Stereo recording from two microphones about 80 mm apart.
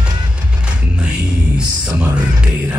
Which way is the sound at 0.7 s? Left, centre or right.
Centre.